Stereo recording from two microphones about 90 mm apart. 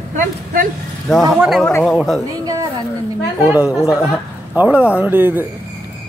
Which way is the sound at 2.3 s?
40° right (ahead or behind).